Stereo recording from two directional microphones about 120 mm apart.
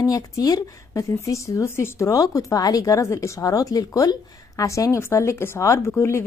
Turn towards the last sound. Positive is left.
turn(degrees=20)  # may be behind; listen again after turning